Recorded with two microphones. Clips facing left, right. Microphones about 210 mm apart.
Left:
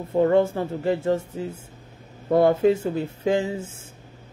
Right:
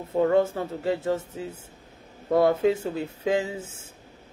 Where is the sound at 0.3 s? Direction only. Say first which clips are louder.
Left 2 dB; 30° left (ahead or behind).